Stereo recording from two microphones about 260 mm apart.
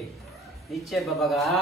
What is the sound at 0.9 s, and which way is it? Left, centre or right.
Speech, centre.